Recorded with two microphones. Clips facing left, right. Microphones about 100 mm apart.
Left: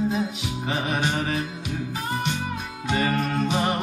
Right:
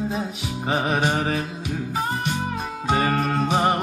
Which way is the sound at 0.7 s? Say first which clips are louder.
Right 4 dB; 40° right (ahead or behind).